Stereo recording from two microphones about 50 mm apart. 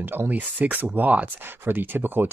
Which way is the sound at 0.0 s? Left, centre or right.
Right.